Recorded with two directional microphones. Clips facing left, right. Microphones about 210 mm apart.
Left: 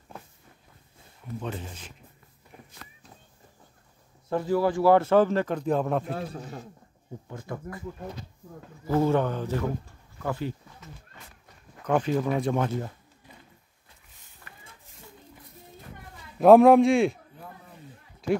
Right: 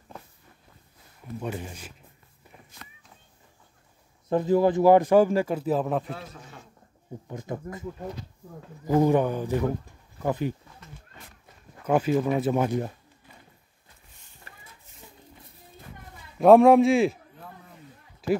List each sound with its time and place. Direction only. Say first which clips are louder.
1.4 s speech: right 3 dB; 10° right (ahead or behind)
4.3 s speech: right 3 dB; 20° right (ahead or behind); by 6.1 s centre (ahead or behind)
6.1 s speech: left 7 dB; 40° left (ahead or behind)
7.2 s speech: right 3 dB; 20° right (ahead or behind)
8.8 s speech: right 2 dB; 15° right (ahead or behind)
11.8 s speech: right 2 dB; 5° right (ahead or behind)
12.6 s speech: right 3 dB; 15° right (ahead or behind)
14.5 s a sound: even; 30° right (ahead or behind)
16.3 s a man's voice: even; centre (ahead or behind)
18.2 s speech: right 1 dB; 5° right (ahead or behind)